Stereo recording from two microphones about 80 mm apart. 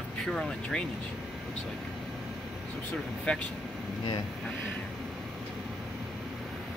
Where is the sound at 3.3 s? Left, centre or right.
Centre.